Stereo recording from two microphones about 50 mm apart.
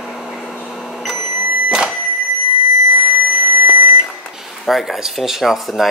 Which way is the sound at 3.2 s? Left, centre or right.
Right.